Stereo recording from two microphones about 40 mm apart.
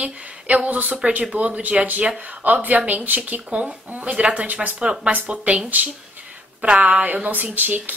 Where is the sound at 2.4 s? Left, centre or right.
Right.